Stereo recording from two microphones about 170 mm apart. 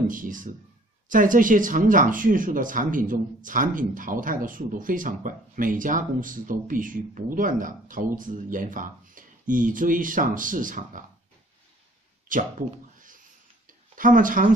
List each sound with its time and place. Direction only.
0.1 s speech: 50° right (ahead or behind)
12.3 s a sound: 50° right (ahead or behind)
13.9 s speech: 50° right (ahead or behind)